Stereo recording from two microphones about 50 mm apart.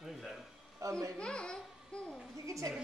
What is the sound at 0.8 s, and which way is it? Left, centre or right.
Speech, right.